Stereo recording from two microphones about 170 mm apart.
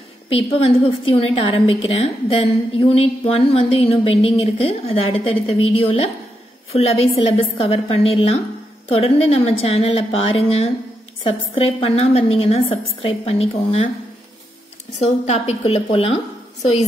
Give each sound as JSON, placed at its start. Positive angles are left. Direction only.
{"t": 0.3, "sound": "a woman's voice", "side_deg": 35}
{"t": 15.0, "sound": "a woman's voice", "side_deg": 40}